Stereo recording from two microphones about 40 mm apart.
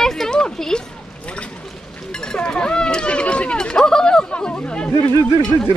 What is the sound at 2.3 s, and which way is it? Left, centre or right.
Speech, left.